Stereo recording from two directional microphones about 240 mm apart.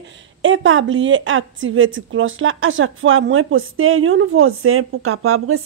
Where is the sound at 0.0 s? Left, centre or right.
Right.